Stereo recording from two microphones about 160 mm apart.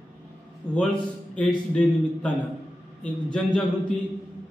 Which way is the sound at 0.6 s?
10° left (ahead or behind).